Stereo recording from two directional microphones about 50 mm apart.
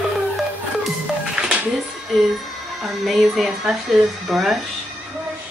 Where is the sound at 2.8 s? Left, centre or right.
Centre.